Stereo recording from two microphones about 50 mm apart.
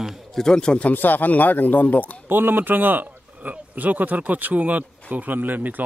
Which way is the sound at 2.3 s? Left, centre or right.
Right.